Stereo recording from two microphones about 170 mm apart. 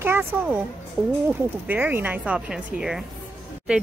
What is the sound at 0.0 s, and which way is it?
Speech, 10° right (ahead or behind).